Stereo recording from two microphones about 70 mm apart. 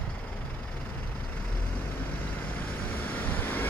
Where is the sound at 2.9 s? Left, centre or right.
Left.